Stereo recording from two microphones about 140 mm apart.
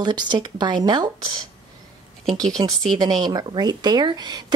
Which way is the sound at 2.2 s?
Centre (ahead or behind).